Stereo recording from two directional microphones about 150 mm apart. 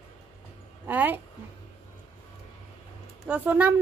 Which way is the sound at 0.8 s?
10° right (ahead or behind).